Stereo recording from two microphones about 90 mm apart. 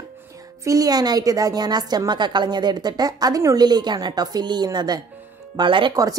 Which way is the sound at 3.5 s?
50° right (ahead or behind).